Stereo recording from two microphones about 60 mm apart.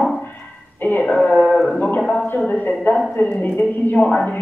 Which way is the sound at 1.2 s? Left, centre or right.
Left.